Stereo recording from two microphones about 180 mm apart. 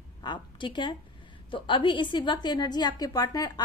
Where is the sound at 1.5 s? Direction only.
25° left (ahead or behind).